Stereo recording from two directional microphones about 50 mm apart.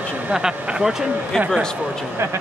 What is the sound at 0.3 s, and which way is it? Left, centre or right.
Speech, centre.